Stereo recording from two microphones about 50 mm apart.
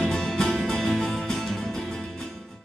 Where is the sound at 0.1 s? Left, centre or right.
Centre.